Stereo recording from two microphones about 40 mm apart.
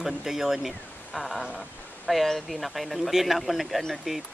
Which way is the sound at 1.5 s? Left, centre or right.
Centre.